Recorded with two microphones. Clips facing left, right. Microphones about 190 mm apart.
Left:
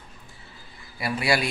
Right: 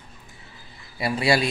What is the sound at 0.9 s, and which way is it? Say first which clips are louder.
Speech: right 3 dB; 25° right (ahead or behind).